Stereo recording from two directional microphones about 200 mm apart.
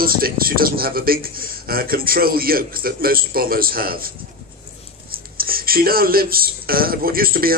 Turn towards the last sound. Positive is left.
turn(degrees=-45)  # may be behind; listen again after turning